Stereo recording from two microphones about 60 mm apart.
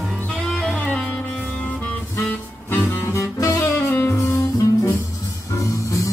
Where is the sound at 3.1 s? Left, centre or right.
Left.